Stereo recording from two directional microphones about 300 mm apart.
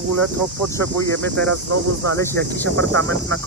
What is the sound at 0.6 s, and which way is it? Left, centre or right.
Speech, centre.